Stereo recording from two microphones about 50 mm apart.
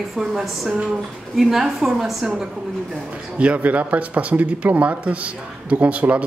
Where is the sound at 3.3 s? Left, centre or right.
Right.